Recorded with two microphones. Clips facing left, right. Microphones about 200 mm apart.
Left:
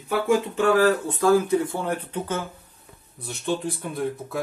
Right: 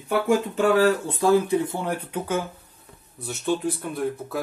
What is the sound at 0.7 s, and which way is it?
Speech, 30° right (ahead or behind).